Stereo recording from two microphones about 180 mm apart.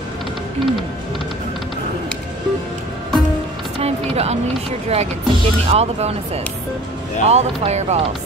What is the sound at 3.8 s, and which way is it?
Music, 35° right (ahead or behind).